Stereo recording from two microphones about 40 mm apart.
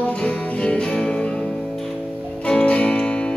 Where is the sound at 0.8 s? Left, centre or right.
Left.